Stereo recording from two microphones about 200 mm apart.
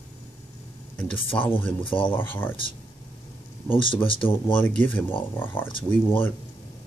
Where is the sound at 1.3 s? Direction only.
25° left (ahead or behind).